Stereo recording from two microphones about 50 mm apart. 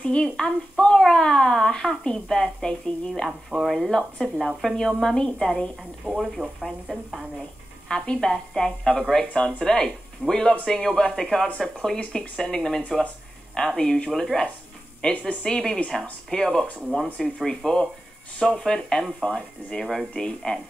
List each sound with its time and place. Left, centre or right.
0.2 s speech: centre
3.3 s speech: centre
3.7 s speech: centre
4.7 s speech: centre
6.0 s speech: centre
7.9 s speech: centre